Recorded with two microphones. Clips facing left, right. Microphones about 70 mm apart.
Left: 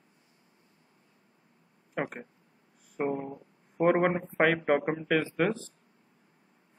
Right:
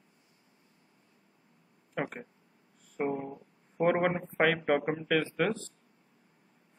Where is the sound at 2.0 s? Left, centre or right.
Centre.